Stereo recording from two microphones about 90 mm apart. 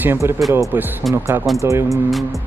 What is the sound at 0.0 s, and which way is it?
Speech, 25° right (ahead or behind).